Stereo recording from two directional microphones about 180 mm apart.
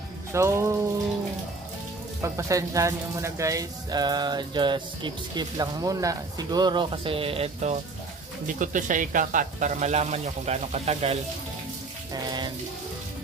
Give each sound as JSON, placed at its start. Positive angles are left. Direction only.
{"t": 0.3, "sound": "speech", "side_deg": -15}
{"t": 2.2, "sound": "speech", "side_deg": -15}
{"t": 8.5, "sound": "speech", "side_deg": -45}
{"t": 12.1, "sound": "a sound", "side_deg": -25}